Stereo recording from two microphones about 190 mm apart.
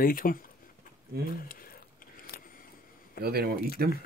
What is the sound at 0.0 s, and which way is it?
Speech, 50° left (ahead or behind).